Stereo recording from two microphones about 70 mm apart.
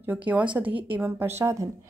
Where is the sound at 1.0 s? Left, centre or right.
Right.